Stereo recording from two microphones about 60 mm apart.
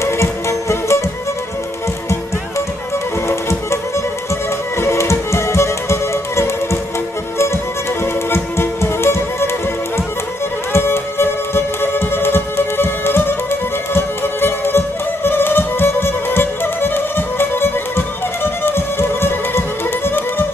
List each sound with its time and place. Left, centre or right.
0.0 s music: left
3.3 s music: left
8.0 s music: left
10.7 s music: left